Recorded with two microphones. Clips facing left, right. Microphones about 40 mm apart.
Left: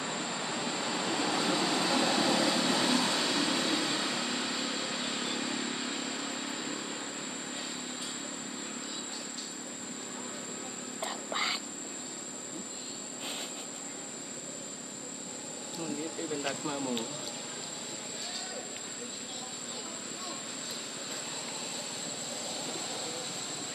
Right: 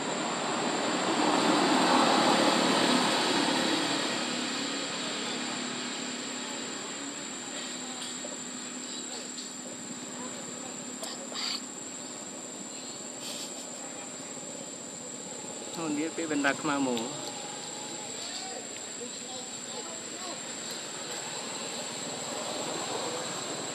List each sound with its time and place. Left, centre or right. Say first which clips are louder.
0.0 s vehicle: right 4 dB; centre
11.0 s a sound: left 7 dB; left
16.0 s speech: right 8 dB; right